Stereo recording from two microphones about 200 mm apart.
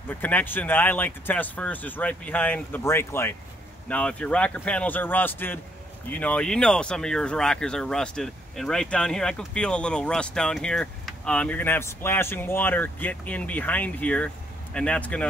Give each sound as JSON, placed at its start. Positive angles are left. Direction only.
{"t": 0.1, "sound": "speech", "side_deg": 10}